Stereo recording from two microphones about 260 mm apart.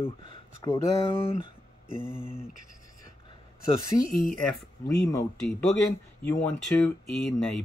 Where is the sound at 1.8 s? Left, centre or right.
Right.